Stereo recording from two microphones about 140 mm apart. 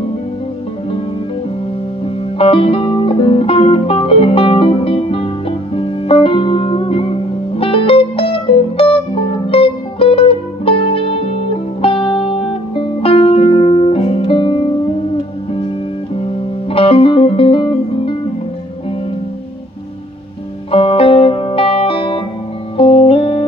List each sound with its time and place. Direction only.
2.3 s music: 40° left (ahead or behind)
16.7 s music: 40° left (ahead or behind)
20.7 s music: 40° left (ahead or behind)